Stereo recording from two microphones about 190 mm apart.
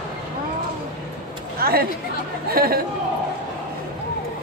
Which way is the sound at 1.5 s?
50° right (ahead or behind).